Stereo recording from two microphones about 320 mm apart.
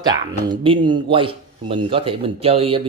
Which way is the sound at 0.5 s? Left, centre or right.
Centre.